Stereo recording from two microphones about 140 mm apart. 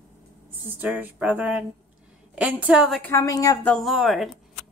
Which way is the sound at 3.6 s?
Centre (ahead or behind).